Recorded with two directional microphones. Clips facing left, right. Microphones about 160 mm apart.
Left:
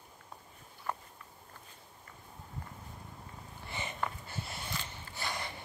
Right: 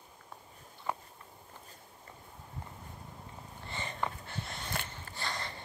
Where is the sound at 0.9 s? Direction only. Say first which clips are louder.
Right 2 dB; 10° right (ahead or behind).